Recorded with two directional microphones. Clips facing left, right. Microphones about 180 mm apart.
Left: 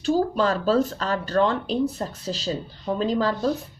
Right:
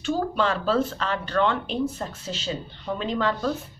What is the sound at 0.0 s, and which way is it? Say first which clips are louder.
Speech: left 3 dB; 40° left (ahead or behind).